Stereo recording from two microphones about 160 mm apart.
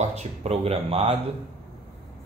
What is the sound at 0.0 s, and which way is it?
Speech, 45° right (ahead or behind).